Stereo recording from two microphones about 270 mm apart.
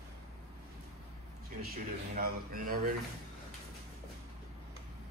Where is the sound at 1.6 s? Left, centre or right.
Right.